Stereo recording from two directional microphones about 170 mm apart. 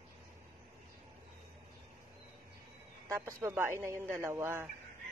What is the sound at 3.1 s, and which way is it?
A man's voice, 15° right (ahead or behind).